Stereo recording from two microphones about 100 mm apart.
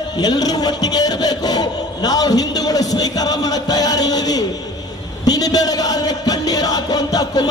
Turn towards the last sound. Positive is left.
turn(degrees=40)  # may be behind; listen again after turning